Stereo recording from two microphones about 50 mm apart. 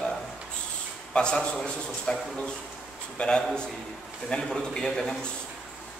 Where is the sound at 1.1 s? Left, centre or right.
Centre.